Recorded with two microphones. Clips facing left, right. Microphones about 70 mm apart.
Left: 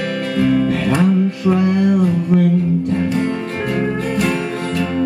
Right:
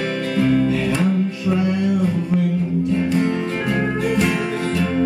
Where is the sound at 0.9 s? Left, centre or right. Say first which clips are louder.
Left 4 dB; left.